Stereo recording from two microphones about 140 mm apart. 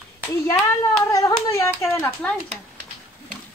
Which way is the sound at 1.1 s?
25° left (ahead or behind).